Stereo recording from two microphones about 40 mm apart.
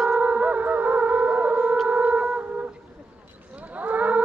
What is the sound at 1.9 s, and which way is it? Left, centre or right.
Shofar, right.